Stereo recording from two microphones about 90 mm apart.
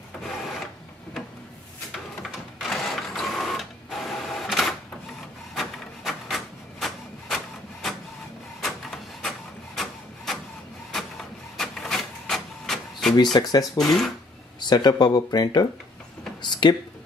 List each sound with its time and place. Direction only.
2.2 s printer: centre (ahead or behind)
5.5 s a sound: centre (ahead or behind)
8.5 s printer: centre (ahead or behind)
9.8 s rub: 5° left (ahead or behind)
11.5 s printer: 5° left (ahead or behind)
13.1 s speech: 50° left (ahead or behind)
13.7 s speech: centre (ahead or behind)
14.6 s speech: 55° left (ahead or behind)
16.4 s a sound: 55° left (ahead or behind)